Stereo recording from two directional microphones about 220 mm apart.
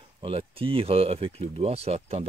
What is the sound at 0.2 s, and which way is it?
Speech, 25° right (ahead or behind).